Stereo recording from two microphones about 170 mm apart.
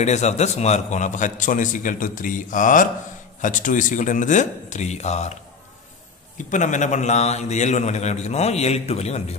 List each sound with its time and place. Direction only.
0.0 s a man's voice: 40° left (ahead or behind)